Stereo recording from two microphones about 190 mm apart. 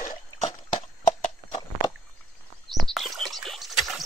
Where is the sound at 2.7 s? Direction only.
Centre (ahead or behind).